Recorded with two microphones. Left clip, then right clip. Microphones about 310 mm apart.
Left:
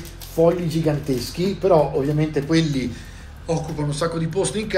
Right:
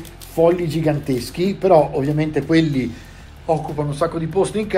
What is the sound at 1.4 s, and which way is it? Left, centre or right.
Speech, right.